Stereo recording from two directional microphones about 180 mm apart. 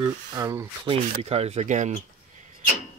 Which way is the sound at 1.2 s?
35° right (ahead or behind).